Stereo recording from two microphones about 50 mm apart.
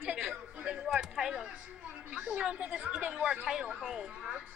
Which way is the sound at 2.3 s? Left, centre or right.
Right.